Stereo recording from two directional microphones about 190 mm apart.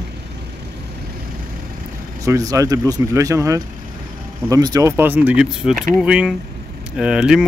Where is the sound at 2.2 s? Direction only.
15° right (ahead or behind).